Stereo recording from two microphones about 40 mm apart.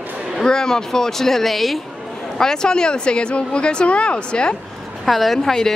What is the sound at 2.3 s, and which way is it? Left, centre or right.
Speech, centre.